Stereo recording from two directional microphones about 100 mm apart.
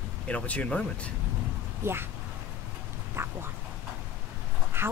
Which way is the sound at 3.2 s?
25° right (ahead or behind).